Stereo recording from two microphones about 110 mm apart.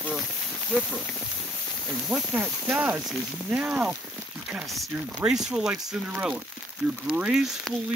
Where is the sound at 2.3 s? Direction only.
15° right (ahead or behind).